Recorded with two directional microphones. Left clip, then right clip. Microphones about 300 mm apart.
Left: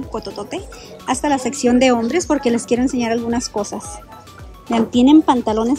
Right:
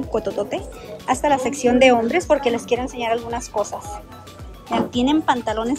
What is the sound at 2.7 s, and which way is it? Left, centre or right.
Speech, left.